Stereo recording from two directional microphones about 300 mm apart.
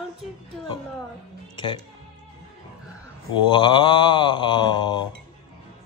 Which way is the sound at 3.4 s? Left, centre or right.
Centre.